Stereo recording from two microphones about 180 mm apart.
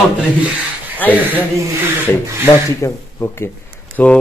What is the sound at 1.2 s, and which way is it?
Speech, 10° right (ahead or behind).